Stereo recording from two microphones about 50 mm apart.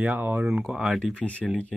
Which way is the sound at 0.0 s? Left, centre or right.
Right.